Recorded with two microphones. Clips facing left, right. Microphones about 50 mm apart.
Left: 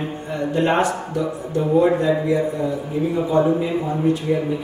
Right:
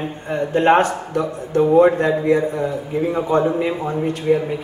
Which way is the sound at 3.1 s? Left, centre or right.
Right.